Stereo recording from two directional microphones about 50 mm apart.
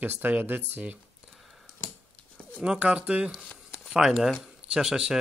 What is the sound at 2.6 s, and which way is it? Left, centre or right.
Speech, right.